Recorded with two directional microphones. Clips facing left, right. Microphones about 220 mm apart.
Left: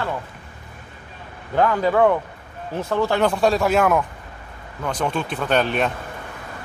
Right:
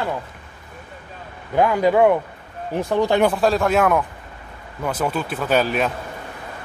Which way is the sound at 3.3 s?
Centre (ahead or behind).